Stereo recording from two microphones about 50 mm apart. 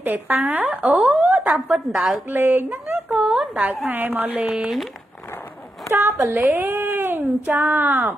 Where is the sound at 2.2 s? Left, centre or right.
Right.